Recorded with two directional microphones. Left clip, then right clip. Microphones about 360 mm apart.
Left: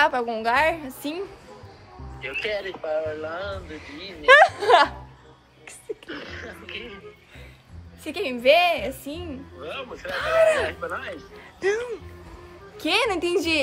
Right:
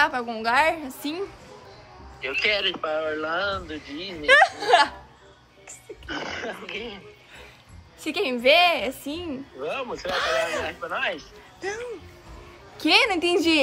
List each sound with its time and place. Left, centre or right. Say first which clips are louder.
0.0 s a woman's voice: left 2 dB; centre
2.2 s a man's voice: right 5 dB; centre
3.7 s a woman's voice: right 3 dB; centre
6.0 s speech: right 5 dB; centre
8.0 s a woman's voice: right 1 dB; centre
9.6 s a man's voice: right 5 dB; right
10.1 s a woman's voice: left 6 dB; centre
11.6 s a woman's voice: left 8 dB; centre
12.7 s a woman's voice: right 3 dB; centre